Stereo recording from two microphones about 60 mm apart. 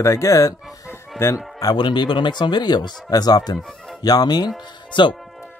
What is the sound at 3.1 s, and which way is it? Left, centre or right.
Speech, left.